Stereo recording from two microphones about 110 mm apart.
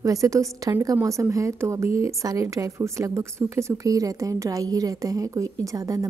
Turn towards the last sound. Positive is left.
turn(degrees=-30)  # may be behind; listen again after turning